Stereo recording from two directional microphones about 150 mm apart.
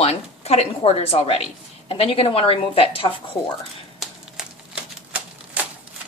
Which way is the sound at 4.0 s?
5° right (ahead or behind).